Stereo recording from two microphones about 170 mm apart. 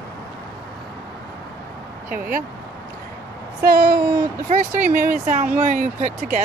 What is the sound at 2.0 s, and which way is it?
Speech, 55° right (ahead or behind).